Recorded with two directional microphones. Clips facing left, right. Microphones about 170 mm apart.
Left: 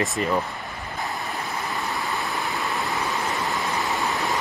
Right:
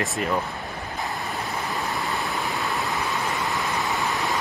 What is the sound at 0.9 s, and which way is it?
Waterfall, centre (ahead or behind).